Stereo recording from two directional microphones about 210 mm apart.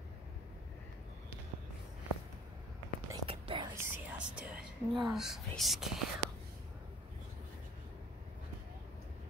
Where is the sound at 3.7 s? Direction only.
10° right (ahead or behind).